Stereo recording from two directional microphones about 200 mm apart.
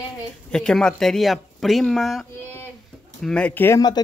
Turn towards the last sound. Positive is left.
turn(degrees=15)  # may be behind; listen again after turning